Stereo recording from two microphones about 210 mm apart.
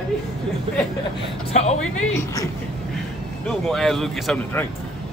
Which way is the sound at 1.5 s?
30° left (ahead or behind).